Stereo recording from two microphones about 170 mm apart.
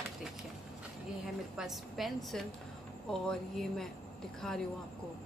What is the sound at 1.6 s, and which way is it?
A woman's voice, centre (ahead or behind).